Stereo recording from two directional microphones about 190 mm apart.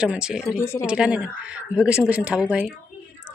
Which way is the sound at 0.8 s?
5° right (ahead or behind).